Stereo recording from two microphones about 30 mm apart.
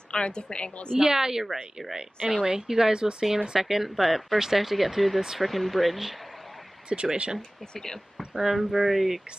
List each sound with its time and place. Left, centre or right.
0.1 s a woman's voice: left
0.9 s a woman's voice: centre
2.3 s a woman's voice: right
3.6 s a woman's voice: centre
6.9 s speech: right
7.7 s speech: left
8.4 s a woman's voice: centre